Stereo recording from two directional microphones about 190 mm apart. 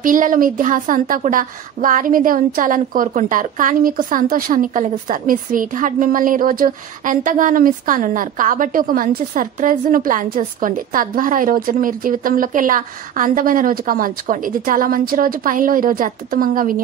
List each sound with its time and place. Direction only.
0.0 s a woman's voice: 45° right (ahead or behind)